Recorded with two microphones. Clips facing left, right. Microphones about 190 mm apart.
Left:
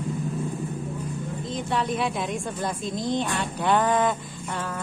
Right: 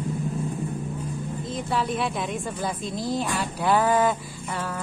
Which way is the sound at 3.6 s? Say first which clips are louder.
Right 1 dB; 5° right (ahead or behind).